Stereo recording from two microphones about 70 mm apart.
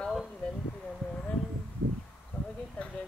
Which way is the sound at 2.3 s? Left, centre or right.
Left.